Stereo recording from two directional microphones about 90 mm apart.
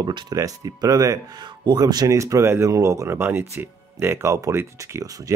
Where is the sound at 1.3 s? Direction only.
55° right (ahead or behind).